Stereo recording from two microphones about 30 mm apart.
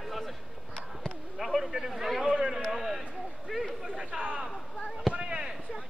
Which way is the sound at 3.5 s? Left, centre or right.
Centre.